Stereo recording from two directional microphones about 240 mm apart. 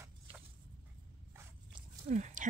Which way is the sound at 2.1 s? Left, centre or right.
Right.